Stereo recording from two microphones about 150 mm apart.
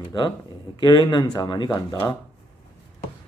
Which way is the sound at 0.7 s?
30° left (ahead or behind).